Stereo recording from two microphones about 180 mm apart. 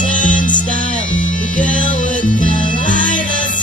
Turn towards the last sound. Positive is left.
turn(degrees=45)  # may be behind; listen again after turning